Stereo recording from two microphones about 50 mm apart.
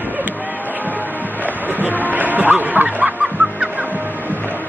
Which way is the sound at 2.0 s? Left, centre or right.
Right.